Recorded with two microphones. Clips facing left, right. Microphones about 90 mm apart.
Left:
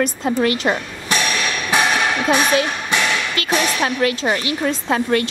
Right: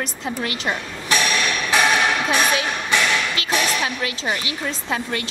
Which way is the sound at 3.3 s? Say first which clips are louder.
Left 2 dB; 45° left (ahead or behind).